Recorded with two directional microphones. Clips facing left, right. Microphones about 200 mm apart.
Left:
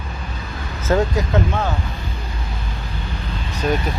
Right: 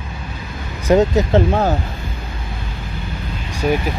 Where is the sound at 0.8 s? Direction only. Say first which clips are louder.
Right 5 dB; 20° right (ahead or behind).